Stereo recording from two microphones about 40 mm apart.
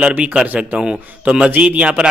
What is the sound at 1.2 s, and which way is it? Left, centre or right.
Speech, right.